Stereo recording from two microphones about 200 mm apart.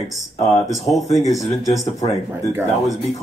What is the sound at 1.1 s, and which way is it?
Speech, centre (ahead or behind).